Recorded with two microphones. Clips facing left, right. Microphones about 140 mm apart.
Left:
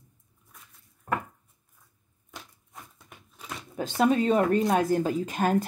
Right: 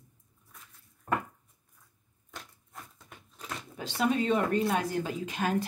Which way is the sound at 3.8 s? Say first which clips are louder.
Left 5 dB; 45° left (ahead or behind).